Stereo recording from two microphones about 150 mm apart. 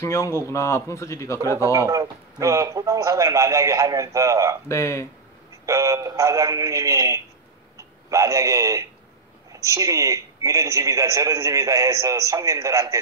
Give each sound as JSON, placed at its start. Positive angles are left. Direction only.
{"t": 0.0, "sound": "a man's voice", "side_deg": 20}
{"t": 1.7, "sound": "a man's voice", "side_deg": -20}
{"t": 4.6, "sound": "speech", "side_deg": 20}
{"t": 5.7, "sound": "a man's voice", "side_deg": -20}